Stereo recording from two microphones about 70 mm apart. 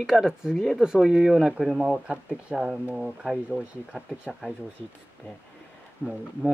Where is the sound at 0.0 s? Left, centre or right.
Centre.